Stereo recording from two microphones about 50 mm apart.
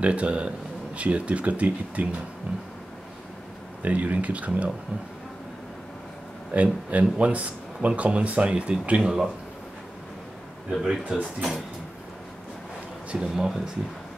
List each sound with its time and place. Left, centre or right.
0.0 s speech: right
3.8 s speech: right
6.5 s speech: right
10.7 s speech: centre
11.1 s speech: right
13.1 s speech: centre